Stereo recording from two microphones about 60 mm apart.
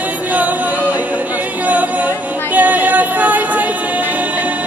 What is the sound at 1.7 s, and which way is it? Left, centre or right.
Singing, right.